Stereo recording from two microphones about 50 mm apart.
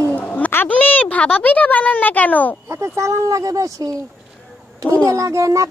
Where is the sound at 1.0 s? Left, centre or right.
Left.